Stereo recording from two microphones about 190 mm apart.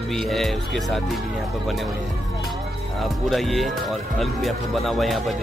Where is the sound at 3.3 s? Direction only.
Centre (ahead or behind).